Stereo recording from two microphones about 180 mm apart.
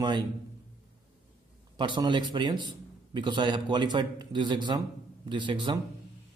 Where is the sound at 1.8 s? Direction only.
25° right (ahead or behind).